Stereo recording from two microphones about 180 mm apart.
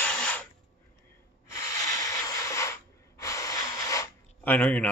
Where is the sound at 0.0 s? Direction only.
5° left (ahead or behind).